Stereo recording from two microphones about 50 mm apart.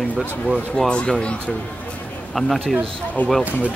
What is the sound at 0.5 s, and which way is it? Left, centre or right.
Speech, centre.